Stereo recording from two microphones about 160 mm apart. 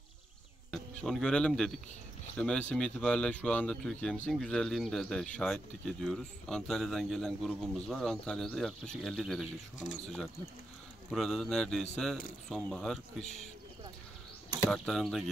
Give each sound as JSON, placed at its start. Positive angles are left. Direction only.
{"t": 0.7, "sound": "speech", "side_deg": 5}
{"t": 14.7, "sound": "speech", "side_deg": 0}